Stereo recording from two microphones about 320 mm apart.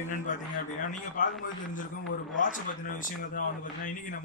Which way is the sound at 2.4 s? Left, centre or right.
Left.